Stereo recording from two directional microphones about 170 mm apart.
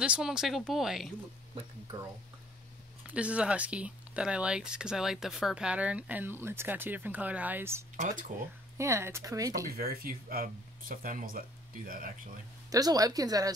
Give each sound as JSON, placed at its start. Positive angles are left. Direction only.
{"t": 0.0, "sound": "speech", "side_deg": -5}
{"t": 3.1, "sound": "speech", "side_deg": -5}
{"t": 7.9, "sound": "speech", "side_deg": -50}
{"t": 8.7, "sound": "speech", "side_deg": -15}
{"t": 9.8, "sound": "speech", "side_deg": -60}
{"t": 12.6, "sound": "a woman's voice", "side_deg": -20}